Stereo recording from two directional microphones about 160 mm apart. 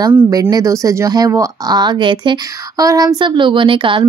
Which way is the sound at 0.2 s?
25° right (ahead or behind).